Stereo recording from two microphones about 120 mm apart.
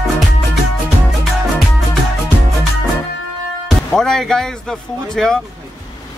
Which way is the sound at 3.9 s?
5° left (ahead or behind).